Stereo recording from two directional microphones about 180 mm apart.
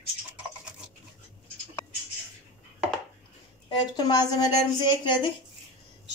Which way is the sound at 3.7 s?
20° left (ahead or behind).